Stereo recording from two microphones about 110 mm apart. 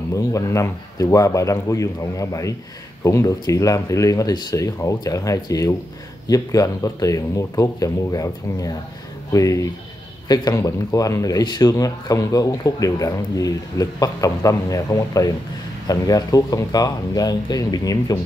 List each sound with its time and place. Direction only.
0.1 s a man's voice: 30° left (ahead or behind)